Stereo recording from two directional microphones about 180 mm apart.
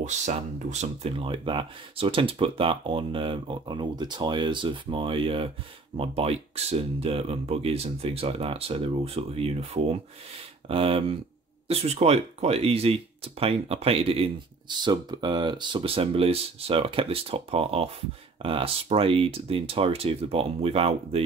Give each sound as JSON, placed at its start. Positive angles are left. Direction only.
{"t": 0.0, "sound": "speech", "side_deg": -40}